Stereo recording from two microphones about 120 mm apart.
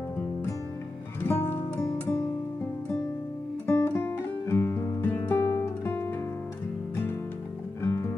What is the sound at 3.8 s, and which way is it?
Guitar, 20° left (ahead or behind).